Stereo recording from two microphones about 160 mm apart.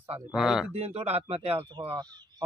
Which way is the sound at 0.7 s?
40° right (ahead or behind).